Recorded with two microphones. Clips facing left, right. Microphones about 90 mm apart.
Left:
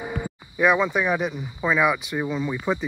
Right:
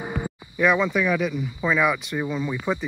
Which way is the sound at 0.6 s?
15° left (ahead or behind).